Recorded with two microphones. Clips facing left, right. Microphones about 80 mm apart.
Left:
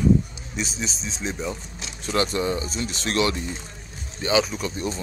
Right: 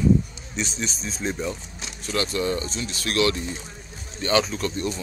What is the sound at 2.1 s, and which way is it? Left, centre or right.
Speech, left.